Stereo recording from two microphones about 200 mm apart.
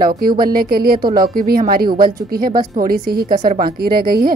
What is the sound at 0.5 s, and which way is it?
Speech, 50° right (ahead or behind).